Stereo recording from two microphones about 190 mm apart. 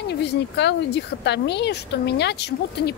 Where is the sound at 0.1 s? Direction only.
65° left (ahead or behind).